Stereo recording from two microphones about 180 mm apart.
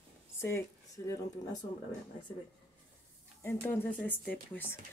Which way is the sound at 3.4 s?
10° left (ahead or behind).